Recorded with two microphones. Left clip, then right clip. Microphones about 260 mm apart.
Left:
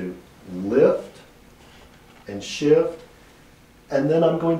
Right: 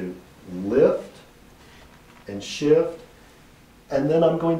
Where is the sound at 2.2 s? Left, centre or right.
Centre.